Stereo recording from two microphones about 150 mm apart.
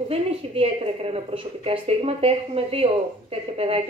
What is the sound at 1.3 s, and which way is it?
A woman's voice, 40° right (ahead or behind).